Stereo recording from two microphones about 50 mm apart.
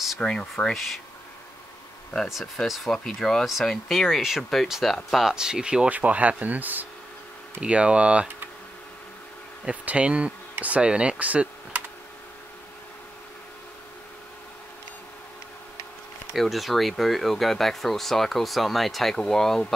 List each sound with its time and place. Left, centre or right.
0.2 s speech: centre
0.7 s speech: centre
2.2 s speech: centre
2.9 s speech: centre
5.9 s speech: right
7.6 s speech: right
9.7 s speech: right
16.3 s speech: centre